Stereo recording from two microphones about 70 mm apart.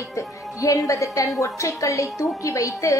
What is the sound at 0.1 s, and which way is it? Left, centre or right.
A woman's voice, left.